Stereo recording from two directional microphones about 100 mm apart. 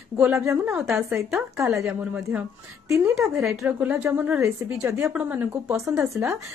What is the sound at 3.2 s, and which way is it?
Speech, 30° right (ahead or behind).